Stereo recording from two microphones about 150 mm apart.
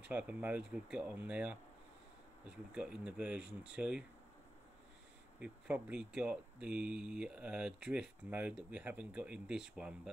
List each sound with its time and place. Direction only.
0.0 s speech: 10° right (ahead or behind)
5.4 s speech: 10° right (ahead or behind)